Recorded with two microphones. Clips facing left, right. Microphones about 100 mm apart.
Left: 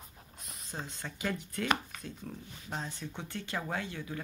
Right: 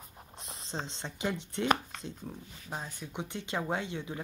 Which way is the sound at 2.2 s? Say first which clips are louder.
Even; 10° right (ahead or behind).